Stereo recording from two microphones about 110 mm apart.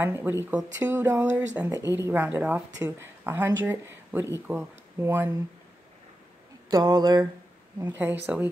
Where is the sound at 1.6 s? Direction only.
25° right (ahead or behind).